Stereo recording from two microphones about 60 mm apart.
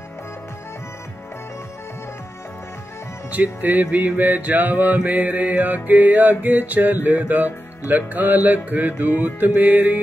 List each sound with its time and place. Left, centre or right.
3.3 s music: right